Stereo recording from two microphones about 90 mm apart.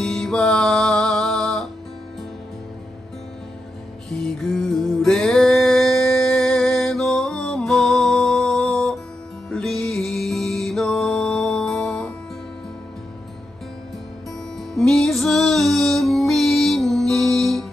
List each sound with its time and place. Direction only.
0.0 s music: 5° left (ahead or behind)
4.1 s music: 5° left (ahead or behind)
14.7 s music: 5° left (ahead or behind)